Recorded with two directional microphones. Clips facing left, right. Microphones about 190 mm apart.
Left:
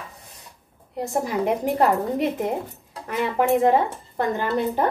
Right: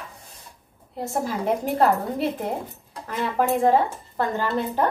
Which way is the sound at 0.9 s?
15° left (ahead or behind).